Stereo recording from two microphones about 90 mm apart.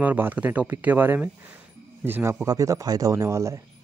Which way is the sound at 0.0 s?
20° right (ahead or behind).